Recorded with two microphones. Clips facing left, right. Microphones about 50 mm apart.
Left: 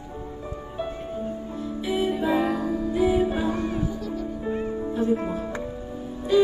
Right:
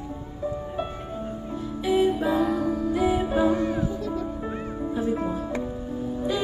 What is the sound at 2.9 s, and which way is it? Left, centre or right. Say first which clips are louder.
Music: left 3 dB; right.